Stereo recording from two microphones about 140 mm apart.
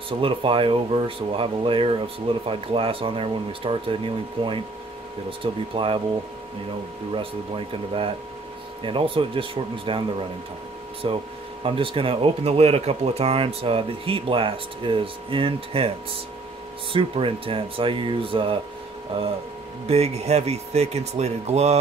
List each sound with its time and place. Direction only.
0.2 s speech: 40° right (ahead or behind)
7.2 s speech: 40° right (ahead or behind)
11.0 s speech: 40° right (ahead or behind)
16.9 s speech: 40° right (ahead or behind)
19.9 s speech: 50° right (ahead or behind)